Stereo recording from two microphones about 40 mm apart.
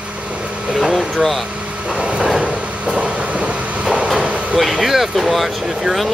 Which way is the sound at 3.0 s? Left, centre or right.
Right.